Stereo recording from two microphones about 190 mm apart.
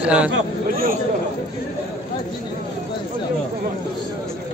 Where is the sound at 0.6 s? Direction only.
50° right (ahead or behind).